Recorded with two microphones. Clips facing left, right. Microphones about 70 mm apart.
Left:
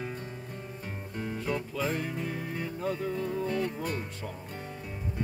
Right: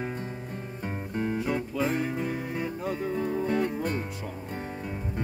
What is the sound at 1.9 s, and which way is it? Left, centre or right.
Music, centre.